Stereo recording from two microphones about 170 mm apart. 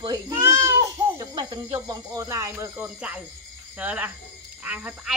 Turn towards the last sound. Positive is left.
turn(degrees=-5)  # may be behind; listen again after turning